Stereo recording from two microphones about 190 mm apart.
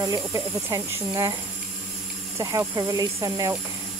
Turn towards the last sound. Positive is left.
turn(degrees=-20)  # may be behind; listen again after turning